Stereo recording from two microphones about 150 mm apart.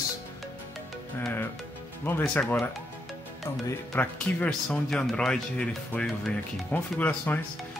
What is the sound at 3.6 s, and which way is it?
Speech, 10° left (ahead or behind).